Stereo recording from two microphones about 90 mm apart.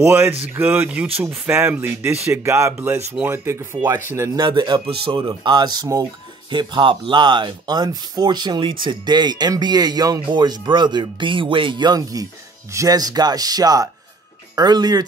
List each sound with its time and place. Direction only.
0.0 s speech: 25° right (ahead or behind)
4.4 s speech: 55° right (ahead or behind)
4.8 s speech: 80° right; by 15.0 s 50° right (ahead or behind)